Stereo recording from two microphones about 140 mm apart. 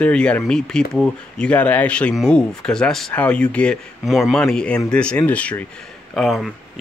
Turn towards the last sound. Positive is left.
turn(degrees=0)  # may be behind; listen again after turning